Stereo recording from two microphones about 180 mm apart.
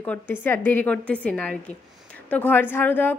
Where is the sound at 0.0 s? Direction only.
10° left (ahead or behind).